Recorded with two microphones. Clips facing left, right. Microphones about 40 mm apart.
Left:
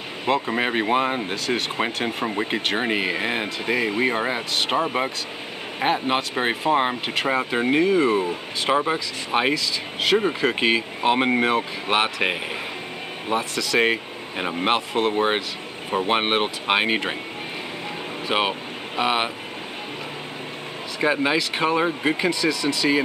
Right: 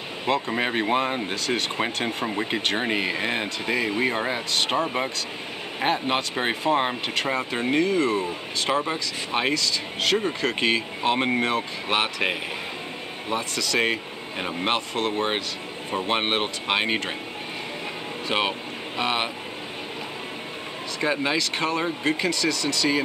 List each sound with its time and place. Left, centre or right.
0.3 s speech: centre
18.3 s speech: centre
21.0 s speech: centre